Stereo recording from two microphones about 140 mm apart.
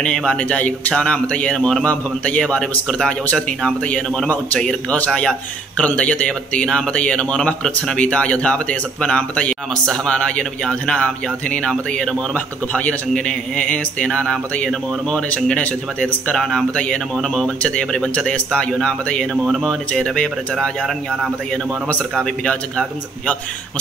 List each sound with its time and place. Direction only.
0.0 s a man's voice: 5° left (ahead or behind)